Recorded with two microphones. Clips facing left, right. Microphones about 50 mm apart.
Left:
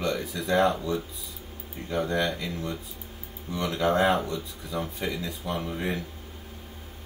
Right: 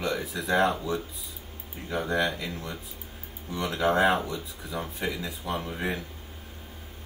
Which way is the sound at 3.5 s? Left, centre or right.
Centre.